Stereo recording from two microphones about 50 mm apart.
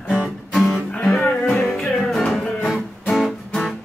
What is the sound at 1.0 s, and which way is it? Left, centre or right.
Music, left.